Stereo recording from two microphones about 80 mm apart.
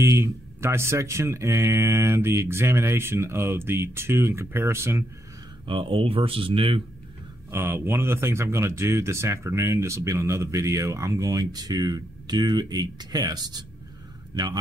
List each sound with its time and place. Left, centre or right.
0.0 s speech: right
5.7 s speech: right
7.5 s a man's voice: right